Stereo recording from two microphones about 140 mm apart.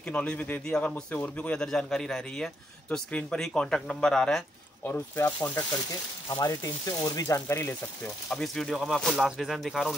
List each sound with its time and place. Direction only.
0.0 s speech: 10° left (ahead or behind)
8.3 s speech: 5° left (ahead or behind)